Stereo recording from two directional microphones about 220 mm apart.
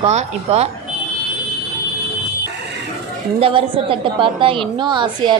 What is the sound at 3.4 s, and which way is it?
A woman's voice, 25° right (ahead or behind).